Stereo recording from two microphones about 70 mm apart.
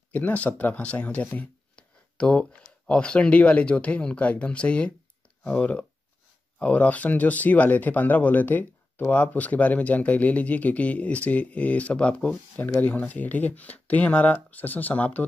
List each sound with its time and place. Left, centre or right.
0.1 s speech: left